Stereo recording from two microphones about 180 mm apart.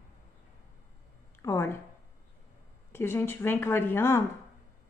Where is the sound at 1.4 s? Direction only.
15° left (ahead or behind).